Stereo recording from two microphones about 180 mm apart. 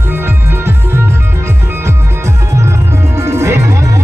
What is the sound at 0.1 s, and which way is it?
Music, 10° right (ahead or behind).